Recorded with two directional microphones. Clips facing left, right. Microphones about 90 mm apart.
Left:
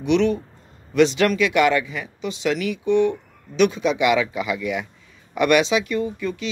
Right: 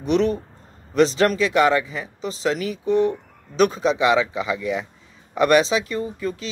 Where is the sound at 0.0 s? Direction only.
40° right (ahead or behind).